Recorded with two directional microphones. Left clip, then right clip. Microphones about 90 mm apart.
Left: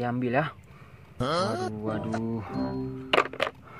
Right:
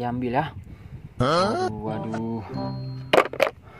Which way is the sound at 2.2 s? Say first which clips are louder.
Right 2 dB; 30° right (ahead or behind).